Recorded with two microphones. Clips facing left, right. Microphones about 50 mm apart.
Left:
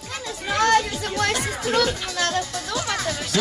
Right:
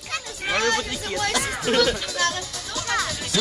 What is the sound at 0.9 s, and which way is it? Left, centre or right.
Music, left.